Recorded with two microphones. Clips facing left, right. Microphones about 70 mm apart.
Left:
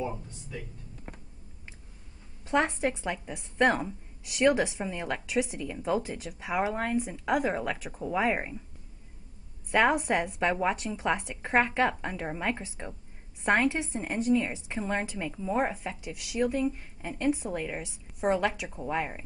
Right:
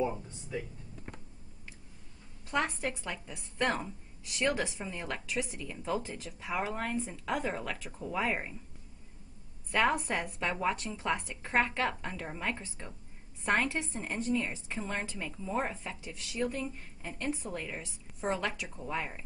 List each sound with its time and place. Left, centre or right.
0.3 s speech: centre
2.5 s a woman's voice: left
9.7 s a woman's voice: centre